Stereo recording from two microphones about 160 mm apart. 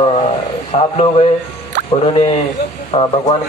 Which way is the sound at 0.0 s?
35° left (ahead or behind).